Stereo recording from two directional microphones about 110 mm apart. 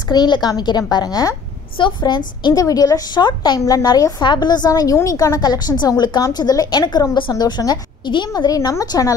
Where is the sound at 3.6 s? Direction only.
30° left (ahead or behind).